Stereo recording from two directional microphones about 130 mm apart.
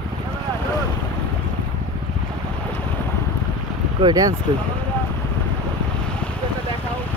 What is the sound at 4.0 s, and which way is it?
Speech, 30° right (ahead or behind).